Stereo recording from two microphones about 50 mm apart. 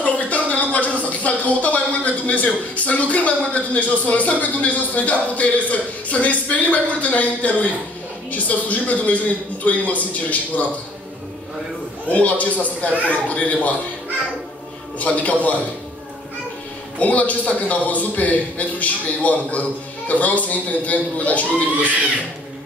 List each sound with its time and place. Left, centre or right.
0.0 s a man's voice: left
12.1 s a man's voice: left
15.0 s a man's voice: left
17.0 s a man's voice: left